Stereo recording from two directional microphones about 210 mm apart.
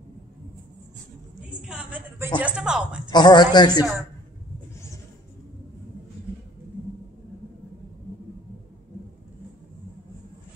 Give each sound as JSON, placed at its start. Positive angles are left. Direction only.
{"t": 1.6, "sound": "a sound", "side_deg": -5}
{"t": 2.4, "sound": "speech", "side_deg": -5}
{"t": 3.1, "sound": "a man's voice", "side_deg": 20}